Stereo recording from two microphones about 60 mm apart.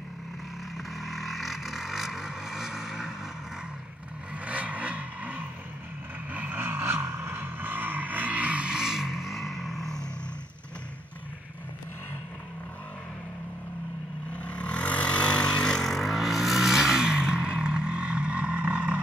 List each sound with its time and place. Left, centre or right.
1.0 s vehicle: centre
4.5 s vehicle: right; by 10.0 s centre
14.3 s vehicle: left; by 18.9 s right